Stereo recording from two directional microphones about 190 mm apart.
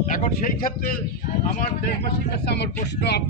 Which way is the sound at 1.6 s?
60° left (ahead or behind).